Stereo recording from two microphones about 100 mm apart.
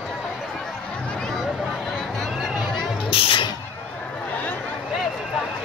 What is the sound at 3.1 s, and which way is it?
Music, 60° left (ahead or behind).